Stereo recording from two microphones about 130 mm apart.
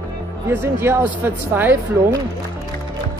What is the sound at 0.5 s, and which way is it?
Speech, 15° right (ahead or behind).